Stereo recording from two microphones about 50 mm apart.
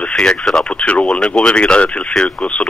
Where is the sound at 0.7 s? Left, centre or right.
Left.